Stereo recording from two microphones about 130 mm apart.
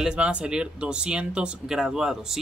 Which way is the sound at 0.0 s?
10° right (ahead or behind).